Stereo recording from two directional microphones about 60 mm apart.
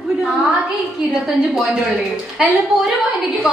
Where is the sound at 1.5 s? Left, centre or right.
Centre.